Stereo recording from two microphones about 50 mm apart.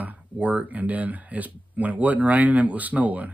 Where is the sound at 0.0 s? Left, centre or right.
Right.